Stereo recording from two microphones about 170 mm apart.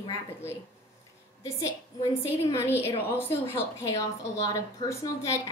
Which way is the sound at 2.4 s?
15° left (ahead or behind).